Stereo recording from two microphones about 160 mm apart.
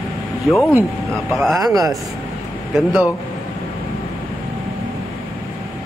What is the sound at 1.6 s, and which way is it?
Speech, 25° right (ahead or behind).